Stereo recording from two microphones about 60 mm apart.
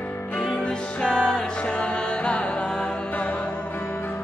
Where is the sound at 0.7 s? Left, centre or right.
Centre.